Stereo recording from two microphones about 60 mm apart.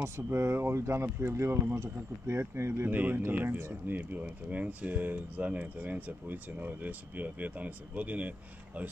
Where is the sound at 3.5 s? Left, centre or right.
Right.